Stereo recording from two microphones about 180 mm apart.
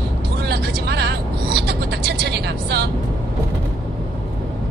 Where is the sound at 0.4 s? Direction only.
65° right (ahead or behind).